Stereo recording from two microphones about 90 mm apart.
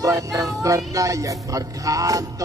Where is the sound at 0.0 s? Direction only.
40° right (ahead or behind).